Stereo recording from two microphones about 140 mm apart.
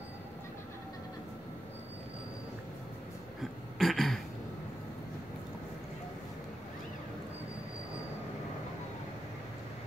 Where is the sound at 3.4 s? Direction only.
Centre (ahead or behind).